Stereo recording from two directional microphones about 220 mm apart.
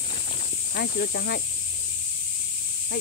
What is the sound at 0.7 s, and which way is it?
Speech, 45° left (ahead or behind).